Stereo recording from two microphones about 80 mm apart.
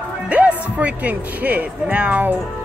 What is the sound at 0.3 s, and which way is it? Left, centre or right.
Speech, centre.